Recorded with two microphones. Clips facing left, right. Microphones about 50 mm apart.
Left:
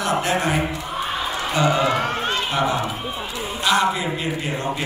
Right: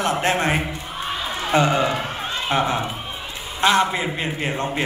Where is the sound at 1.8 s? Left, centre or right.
Left.